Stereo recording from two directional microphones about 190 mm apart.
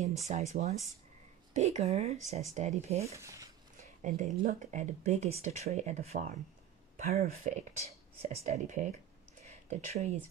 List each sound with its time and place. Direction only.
0.0 s speech: 35° right (ahead or behind)
3.0 s speech: 15° right (ahead or behind)
4.4 s speech: 45° right (ahead or behind)
9.4 s a sound: 35° right (ahead or behind)